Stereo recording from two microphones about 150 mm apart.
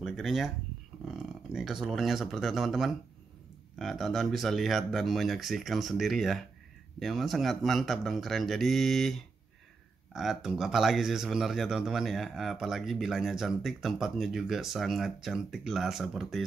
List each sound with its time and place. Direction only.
0.0 s speech: centre (ahead or behind)